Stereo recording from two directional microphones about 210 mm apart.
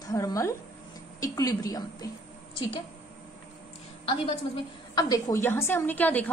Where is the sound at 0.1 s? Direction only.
15° left (ahead or behind).